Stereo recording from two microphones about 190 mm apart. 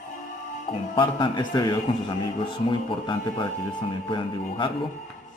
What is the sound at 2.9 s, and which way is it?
Speech, 25° left (ahead or behind).